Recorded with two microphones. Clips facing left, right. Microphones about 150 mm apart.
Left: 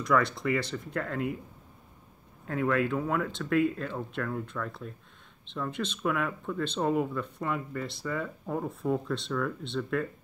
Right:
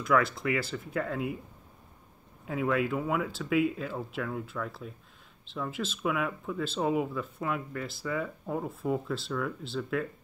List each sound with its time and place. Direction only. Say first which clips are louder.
0.0 s speech: even; 5° right (ahead or behind)
2.4 s speech: left 1 dB; 5° right (ahead or behind)